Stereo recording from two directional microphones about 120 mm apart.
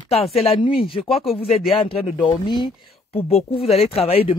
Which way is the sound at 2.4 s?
40° left (ahead or behind).